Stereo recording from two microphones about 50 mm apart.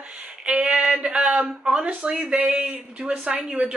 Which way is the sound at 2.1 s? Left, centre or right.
Right.